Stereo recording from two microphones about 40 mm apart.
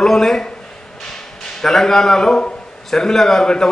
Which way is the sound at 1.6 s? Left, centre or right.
Centre.